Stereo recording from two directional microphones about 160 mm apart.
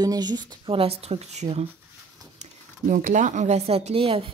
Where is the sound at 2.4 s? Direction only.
55° right (ahead or behind); by 4.2 s 35° right (ahead or behind).